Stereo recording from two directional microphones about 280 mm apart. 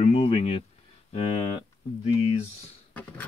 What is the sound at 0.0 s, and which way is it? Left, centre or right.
Speech, left.